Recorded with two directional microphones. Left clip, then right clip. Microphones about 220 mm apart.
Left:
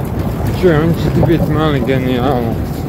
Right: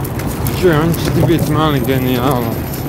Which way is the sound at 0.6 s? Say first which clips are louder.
Left 1 dB; 15° right (ahead or behind).